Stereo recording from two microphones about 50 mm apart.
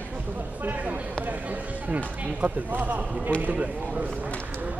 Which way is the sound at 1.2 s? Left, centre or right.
Right.